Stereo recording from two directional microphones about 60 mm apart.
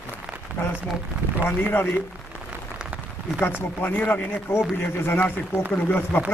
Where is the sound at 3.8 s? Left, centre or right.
Left.